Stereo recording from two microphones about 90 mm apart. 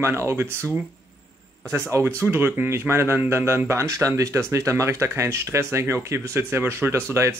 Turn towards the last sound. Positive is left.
turn(degrees=-30)  # may be behind; listen again after turning